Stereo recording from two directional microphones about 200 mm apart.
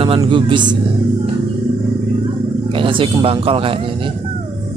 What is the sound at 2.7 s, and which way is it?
Speech, 25° right (ahead or behind).